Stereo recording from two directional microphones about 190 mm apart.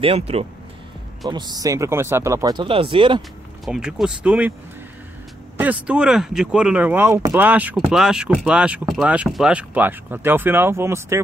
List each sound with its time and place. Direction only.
0.0 s speech: 30° right (ahead or behind)
1.3 s speech: 20° right (ahead or behind)
3.2 s speech: centre (ahead or behind)
5.6 s speech: 5° right (ahead or behind)